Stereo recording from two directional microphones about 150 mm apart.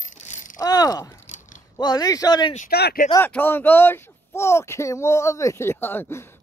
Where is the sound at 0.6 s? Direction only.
25° left (ahead or behind).